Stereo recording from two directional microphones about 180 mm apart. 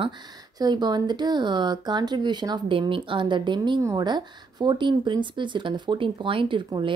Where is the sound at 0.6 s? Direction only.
25° right (ahead or behind).